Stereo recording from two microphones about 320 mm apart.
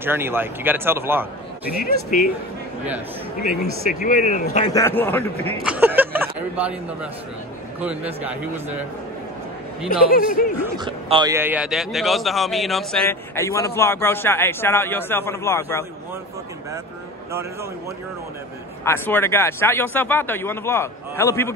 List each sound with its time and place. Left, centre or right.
0.0 s speech: centre
4.0 s a man's voice: left; by 5.2 s centre
5.7 s a man's voice: centre
9.8 s speech: left
10.6 s a man's voice: centre
18.9 s a man's voice: centre